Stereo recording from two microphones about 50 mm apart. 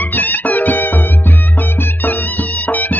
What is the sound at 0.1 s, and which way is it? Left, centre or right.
Music, left.